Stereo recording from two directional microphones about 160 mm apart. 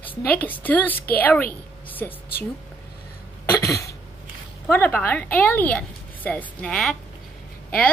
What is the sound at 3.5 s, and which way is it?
Cough, 20° left (ahead or behind).